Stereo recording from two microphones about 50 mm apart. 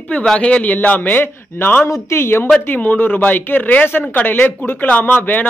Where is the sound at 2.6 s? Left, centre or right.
Left.